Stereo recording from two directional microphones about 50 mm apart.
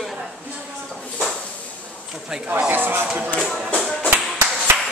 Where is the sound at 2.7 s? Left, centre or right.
Right.